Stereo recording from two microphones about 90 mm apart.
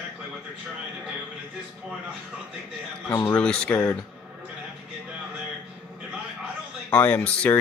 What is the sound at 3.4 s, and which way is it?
Speech, 10° left (ahead or behind).